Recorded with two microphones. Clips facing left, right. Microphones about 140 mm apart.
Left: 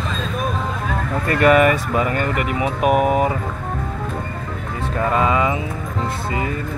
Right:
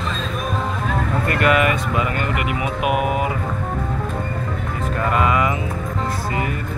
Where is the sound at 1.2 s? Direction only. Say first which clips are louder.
Left 5 dB; 40° left (ahead or behind).